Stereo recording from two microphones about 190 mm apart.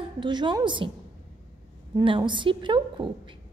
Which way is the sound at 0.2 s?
25° right (ahead or behind).